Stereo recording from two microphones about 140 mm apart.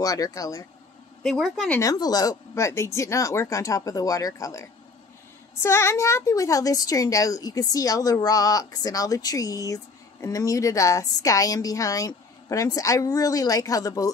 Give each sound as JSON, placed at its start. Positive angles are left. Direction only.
{"t": 0.0, "sound": "a woman's voice", "side_deg": 25}
{"t": 1.2, "sound": "a woman's voice", "side_deg": 0}
{"t": 1.8, "sound": "a woman's voice", "side_deg": 25}